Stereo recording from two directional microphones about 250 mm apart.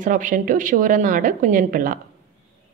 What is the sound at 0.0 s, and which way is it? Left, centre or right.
Speech, right.